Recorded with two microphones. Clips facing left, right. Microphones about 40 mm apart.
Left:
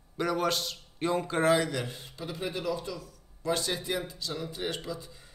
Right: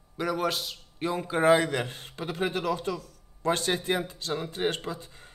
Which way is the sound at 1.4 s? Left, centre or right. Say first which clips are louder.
Right 5 dB; right.